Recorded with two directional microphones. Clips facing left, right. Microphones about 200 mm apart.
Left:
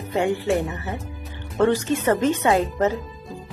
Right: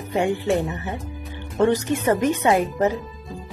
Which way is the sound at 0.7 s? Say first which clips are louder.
Right 1 dB; 20° right (ahead or behind).